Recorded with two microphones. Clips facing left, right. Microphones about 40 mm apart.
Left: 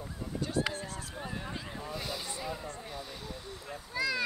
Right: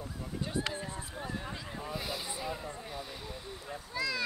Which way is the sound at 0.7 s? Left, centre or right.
Right.